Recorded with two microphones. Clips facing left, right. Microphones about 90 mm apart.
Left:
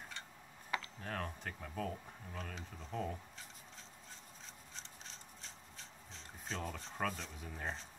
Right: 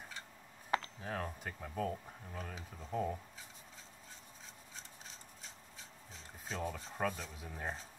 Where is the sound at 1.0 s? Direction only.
5° right (ahead or behind).